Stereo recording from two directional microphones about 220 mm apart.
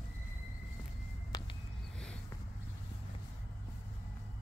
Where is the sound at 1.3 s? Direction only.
15° left (ahead or behind).